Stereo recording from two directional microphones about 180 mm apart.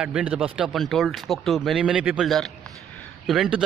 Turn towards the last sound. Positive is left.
turn(degrees=-5)  # may be behind; listen again after turning